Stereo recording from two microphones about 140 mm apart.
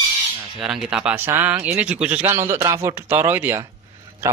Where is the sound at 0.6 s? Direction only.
5° right (ahead or behind).